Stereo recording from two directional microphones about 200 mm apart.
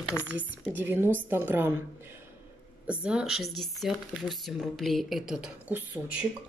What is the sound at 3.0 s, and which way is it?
Speech, 5° right (ahead or behind).